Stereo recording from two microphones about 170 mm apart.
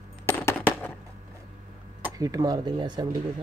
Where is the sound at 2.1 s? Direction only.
20° right (ahead or behind).